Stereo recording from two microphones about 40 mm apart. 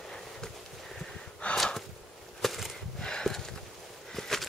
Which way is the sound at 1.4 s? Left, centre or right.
Left.